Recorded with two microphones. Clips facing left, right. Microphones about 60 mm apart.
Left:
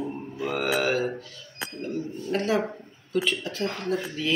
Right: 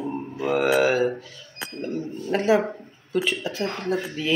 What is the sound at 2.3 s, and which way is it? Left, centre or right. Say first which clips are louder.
A man's voice: right 5 dB; centre.